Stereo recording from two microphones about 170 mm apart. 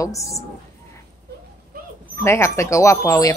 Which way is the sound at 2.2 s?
15° left (ahead or behind).